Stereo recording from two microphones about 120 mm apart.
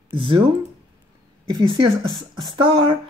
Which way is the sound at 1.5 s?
40° right (ahead or behind).